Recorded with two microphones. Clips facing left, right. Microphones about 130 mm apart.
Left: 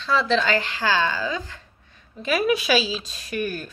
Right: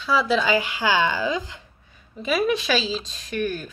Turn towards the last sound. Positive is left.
turn(degrees=5)  # may be behind; listen again after turning